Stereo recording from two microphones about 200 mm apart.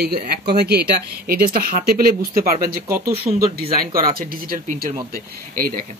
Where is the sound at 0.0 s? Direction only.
50° right (ahead or behind).